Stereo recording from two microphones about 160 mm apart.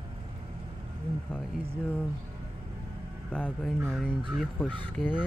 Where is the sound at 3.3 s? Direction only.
5° left (ahead or behind).